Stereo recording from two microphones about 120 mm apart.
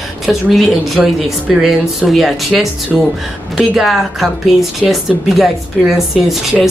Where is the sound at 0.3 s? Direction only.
Centre (ahead or behind).